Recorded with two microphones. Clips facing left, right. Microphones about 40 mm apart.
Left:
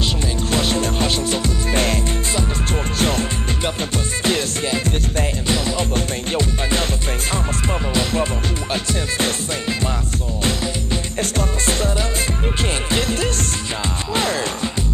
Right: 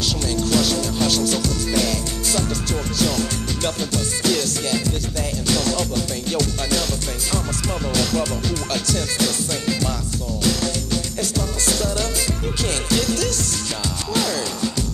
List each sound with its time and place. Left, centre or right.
0.5 s music: left
3.0 s music: left
5.5 s music: left
7.9 s music: left
11.1 s music: left